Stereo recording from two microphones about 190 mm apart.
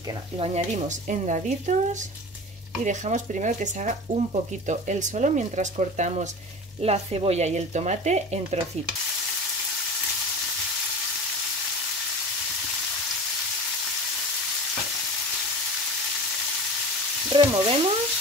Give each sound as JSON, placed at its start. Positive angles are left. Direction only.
{"t": 0.4, "sound": "speech", "side_deg": -40}
{"t": 2.8, "sound": "speech", "side_deg": -40}
{"t": 17.3, "sound": "stir", "side_deg": -25}